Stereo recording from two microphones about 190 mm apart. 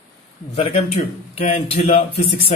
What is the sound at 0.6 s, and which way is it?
Speech, 35° left (ahead or behind).